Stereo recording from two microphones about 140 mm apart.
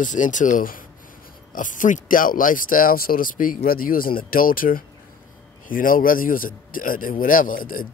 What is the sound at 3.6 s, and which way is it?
A man's voice, 90° left.